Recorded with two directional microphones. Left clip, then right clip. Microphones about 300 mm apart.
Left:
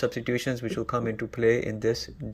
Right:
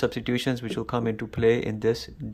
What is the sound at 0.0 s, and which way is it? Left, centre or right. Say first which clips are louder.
Speech: right 1 dB; centre.